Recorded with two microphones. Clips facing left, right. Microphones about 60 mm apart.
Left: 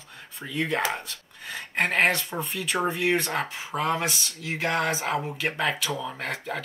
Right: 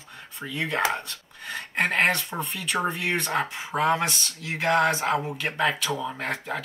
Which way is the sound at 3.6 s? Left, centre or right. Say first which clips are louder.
Right 4 dB; right.